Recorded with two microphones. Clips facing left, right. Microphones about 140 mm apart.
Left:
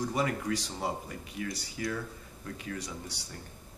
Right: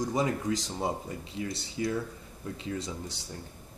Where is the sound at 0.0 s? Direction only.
20° right (ahead or behind).